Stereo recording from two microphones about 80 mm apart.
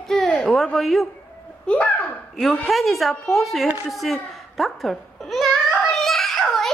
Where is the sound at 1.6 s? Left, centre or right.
Centre.